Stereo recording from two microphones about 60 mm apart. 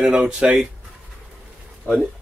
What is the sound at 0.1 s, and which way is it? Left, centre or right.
Speech, centre.